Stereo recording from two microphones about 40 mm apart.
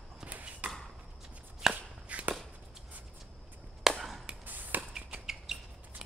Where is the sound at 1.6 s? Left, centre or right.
Centre.